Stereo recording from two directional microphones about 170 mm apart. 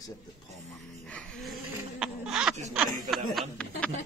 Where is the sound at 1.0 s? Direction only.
5° left (ahead or behind).